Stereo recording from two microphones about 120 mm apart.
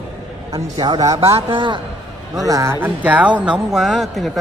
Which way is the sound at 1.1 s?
55° right (ahead or behind).